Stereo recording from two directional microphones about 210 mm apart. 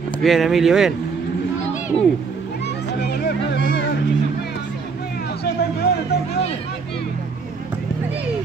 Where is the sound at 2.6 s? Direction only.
50° left (ahead or behind).